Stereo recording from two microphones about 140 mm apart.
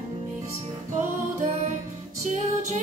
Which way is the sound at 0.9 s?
55° right (ahead or behind).